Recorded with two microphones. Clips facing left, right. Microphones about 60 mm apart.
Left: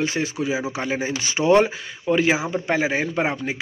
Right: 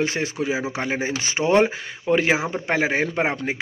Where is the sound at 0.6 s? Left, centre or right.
Right.